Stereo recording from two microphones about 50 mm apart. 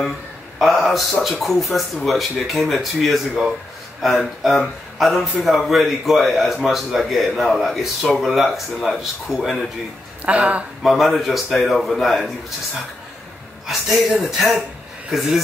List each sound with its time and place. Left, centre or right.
0.6 s a man's voice: centre
10.2 s speech: right
10.8 s a man's voice: centre
13.7 s a man's voice: centre